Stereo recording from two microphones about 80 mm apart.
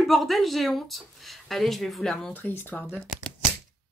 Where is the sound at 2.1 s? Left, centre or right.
Left.